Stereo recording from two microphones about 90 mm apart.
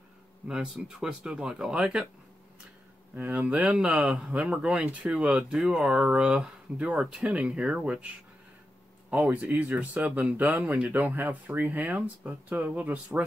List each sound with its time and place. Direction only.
0.5 s speech: 5° right (ahead or behind)
3.2 s speech: 20° right (ahead or behind)
9.1 s speech: 15° right (ahead or behind)